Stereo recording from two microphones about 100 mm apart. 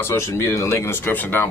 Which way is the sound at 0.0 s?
25° left (ahead or behind).